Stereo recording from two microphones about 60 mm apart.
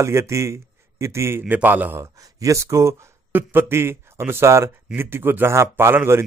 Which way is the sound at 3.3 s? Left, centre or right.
Right.